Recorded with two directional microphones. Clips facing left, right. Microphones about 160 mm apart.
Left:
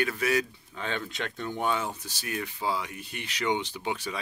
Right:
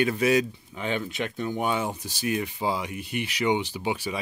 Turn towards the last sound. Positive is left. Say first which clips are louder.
# right 4 dB
turn(degrees=-10)  # may be behind; listen again after turning